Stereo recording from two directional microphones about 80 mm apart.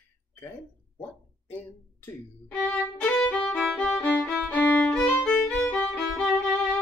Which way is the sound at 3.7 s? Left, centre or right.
Left.